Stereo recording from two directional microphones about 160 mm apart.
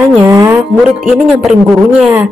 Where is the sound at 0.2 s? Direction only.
20° right (ahead or behind).